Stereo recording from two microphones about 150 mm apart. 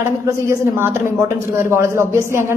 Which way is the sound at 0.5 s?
15° right (ahead or behind).